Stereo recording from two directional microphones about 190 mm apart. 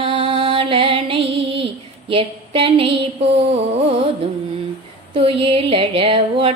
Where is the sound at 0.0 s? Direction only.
30° right (ahead or behind).